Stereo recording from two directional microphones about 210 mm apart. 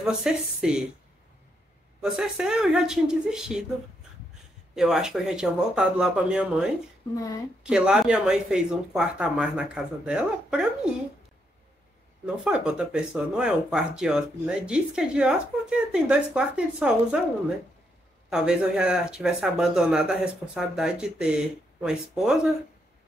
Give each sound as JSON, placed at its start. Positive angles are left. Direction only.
{"t": 0.0, "sound": "speech", "side_deg": -5}
{"t": 2.0, "sound": "speech", "side_deg": 0}
{"t": 4.7, "sound": "speech", "side_deg": 0}
{"t": 12.4, "sound": "speech", "side_deg": -5}
{"t": 18.3, "sound": "speech", "side_deg": -5}